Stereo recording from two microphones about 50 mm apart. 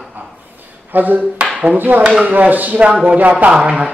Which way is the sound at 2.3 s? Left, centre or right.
Right.